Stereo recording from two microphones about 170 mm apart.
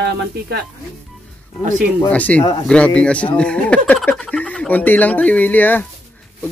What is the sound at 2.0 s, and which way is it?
Speech, 10° left (ahead or behind).